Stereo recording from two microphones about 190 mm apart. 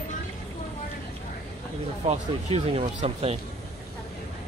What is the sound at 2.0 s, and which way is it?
Speech, 30° right (ahead or behind).